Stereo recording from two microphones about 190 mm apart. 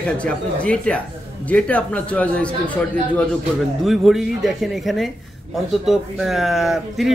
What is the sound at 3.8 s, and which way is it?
Speech, centre (ahead or behind).